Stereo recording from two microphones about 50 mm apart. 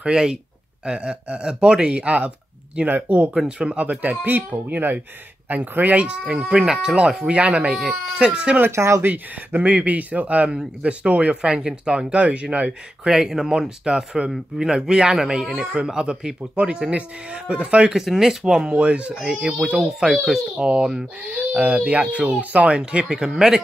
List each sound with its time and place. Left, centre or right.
0.0 s speech: centre
8.7 s speech: right
9.0 s speech: right
13.1 s speech: centre
15.7 s speech: centre
17.9 s speech: centre; by 22.8 s right
22.8 s speech: centre